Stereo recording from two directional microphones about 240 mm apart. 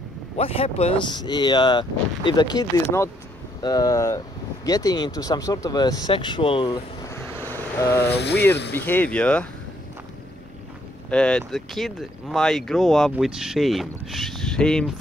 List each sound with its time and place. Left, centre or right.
0.4 s speech: left
8.0 s speech: left
8.7 s speech: centre
11.1 s speech: centre